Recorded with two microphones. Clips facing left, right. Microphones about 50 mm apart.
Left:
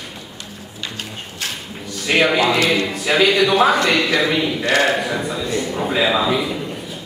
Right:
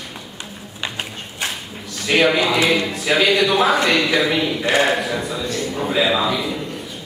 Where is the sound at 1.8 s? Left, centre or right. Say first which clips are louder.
Even; centre.